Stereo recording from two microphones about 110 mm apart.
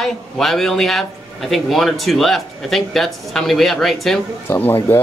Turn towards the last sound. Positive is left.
turn(degrees=20)  # may be behind; listen again after turning